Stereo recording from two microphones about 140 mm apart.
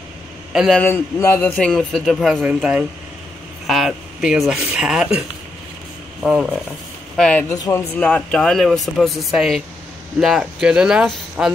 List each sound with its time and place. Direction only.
0.5 s a man's voice: 5° right (ahead or behind)
0.7 s a man's voice: 15° left (ahead or behind)
1.5 s speech: 5° left (ahead or behind)
6.2 s speech: 5° right (ahead or behind)
7.2 s a man's voice: 10° left (ahead or behind)